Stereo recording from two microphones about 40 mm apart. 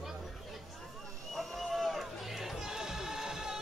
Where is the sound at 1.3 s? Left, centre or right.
Centre.